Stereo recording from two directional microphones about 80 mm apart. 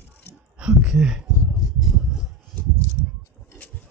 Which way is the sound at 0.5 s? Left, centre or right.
Centre.